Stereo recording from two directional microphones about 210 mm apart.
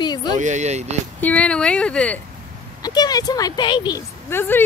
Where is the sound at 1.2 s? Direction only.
5° left (ahead or behind).